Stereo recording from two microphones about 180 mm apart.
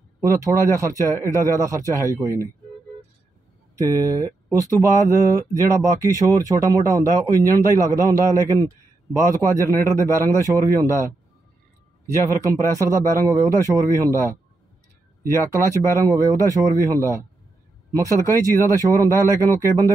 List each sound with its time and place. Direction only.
0.2 s speech: 15° right (ahead or behind)
3.7 s speech: 20° right (ahead or behind)
12.7 s speech: 15° right (ahead or behind)